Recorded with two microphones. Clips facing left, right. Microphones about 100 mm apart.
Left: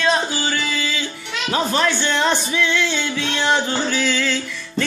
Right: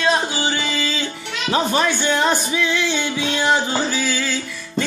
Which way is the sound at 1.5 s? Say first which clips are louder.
Right 1 dB; 20° right (ahead or behind).